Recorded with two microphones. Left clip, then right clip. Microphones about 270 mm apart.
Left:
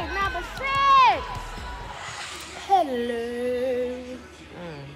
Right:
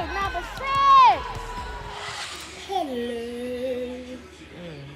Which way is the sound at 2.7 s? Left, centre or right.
Centre.